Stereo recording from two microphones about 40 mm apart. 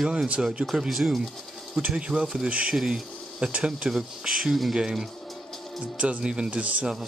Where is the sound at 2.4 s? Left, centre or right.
Right.